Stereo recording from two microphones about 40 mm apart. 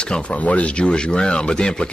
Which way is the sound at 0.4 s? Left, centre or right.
Left.